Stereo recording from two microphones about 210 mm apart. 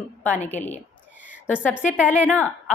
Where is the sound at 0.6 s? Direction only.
35° left (ahead or behind).